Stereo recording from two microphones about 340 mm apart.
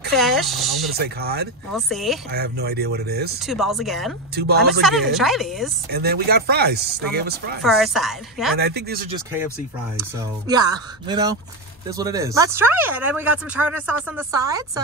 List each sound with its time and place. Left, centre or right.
0.1 s speech: centre
0.9 s speech: right
1.7 s speech: centre
2.3 s speech: right
3.3 s speech: centre
4.4 s speech: right
5.1 s speech: centre
5.9 s speech: right
7.6 s speech: centre
8.5 s speech: right
9.9 s speech: centre